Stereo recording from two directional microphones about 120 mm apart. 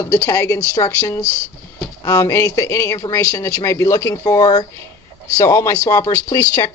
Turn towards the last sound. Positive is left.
turn(degrees=25)  # may be behind; listen again after turning